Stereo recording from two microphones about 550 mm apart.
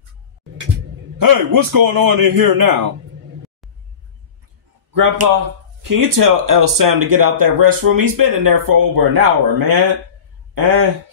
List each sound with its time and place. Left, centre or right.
1.1 s speech: right
4.9 s speech: right